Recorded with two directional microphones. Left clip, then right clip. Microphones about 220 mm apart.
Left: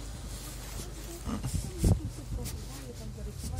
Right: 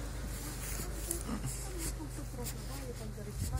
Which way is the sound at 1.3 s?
20° left (ahead or behind).